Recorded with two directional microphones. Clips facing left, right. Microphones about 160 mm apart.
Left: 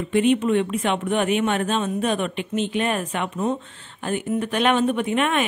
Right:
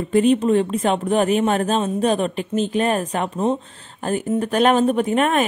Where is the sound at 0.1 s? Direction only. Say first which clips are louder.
Right 3 dB; 35° right (ahead or behind).